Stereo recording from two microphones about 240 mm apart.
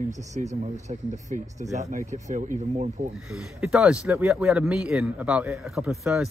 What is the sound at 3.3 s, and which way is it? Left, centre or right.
Speech, centre.